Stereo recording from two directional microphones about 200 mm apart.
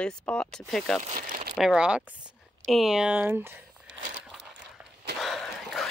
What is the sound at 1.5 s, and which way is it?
Speech, 5° right (ahead or behind).